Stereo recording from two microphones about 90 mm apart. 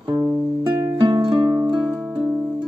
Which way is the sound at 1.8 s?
5° right (ahead or behind).